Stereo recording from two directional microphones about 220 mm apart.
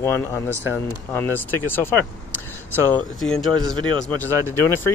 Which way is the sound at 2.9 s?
Centre (ahead or behind).